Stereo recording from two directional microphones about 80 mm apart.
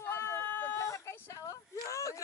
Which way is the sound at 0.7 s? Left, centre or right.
Left.